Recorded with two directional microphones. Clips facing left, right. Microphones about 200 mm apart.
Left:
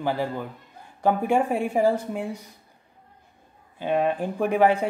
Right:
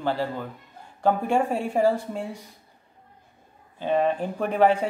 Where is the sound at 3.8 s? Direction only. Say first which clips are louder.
Even; 10° left (ahead or behind).